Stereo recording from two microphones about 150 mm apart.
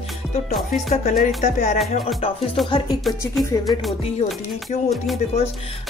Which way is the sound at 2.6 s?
Centre (ahead or behind).